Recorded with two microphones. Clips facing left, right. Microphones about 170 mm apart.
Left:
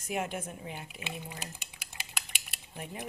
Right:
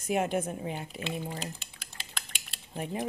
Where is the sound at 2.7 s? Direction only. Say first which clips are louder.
Right 7 dB; 20° right (ahead or behind).